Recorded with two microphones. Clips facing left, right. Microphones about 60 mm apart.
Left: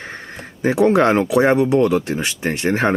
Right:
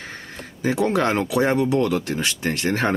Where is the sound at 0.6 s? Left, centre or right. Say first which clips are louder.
Left 6 dB; left.